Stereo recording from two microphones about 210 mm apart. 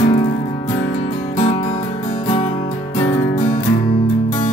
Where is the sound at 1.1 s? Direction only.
40° left (ahead or behind).